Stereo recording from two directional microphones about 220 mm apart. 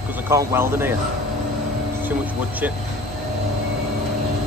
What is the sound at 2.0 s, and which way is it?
Speech, 5° right (ahead or behind).